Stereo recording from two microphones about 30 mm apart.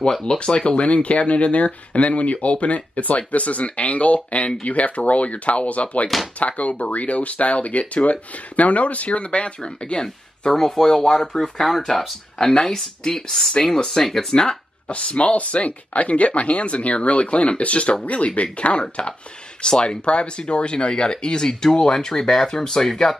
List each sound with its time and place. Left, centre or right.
0.1 s speech: left
0.4 s speech: left
10.5 s speech: centre
12.5 s speech: centre
14.3 s speech: left
14.9 s speech: left
19.6 s speech: left
20.1 s speech: left; by 23.1 s centre